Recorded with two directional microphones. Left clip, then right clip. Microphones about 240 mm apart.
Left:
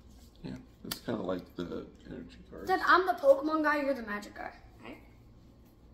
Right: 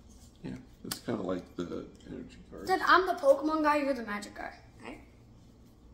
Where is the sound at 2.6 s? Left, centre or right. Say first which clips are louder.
Right 1 dB; centre.